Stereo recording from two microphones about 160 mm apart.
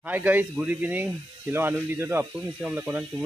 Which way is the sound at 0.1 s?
10° right (ahead or behind).